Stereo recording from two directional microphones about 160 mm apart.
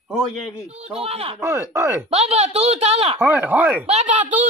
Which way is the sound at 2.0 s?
40° right (ahead or behind).